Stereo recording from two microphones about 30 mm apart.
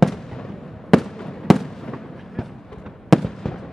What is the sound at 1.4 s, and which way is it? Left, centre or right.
Fireworks, centre.